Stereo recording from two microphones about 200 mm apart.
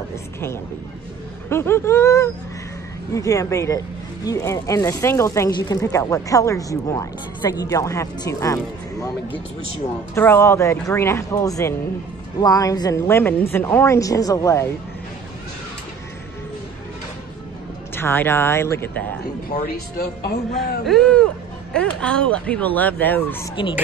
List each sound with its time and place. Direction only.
1.5 s speech: 10° left (ahead or behind)
10.1 s speech: 10° left (ahead or behind)
17.9 s speech: 10° left (ahead or behind)
19.5 s speech: 50° left (ahead or behind)
20.8 s speech: 5° left (ahead or behind)